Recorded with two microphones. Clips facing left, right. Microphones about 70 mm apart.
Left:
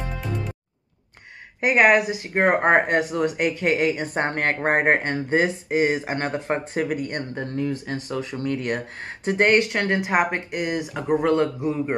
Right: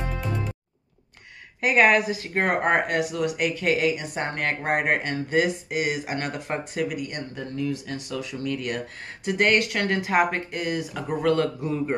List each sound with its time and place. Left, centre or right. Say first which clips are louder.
1.6 s speech: left 2 dB; centre